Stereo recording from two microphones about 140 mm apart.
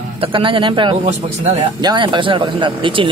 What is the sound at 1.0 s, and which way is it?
Speech, 55° right (ahead or behind).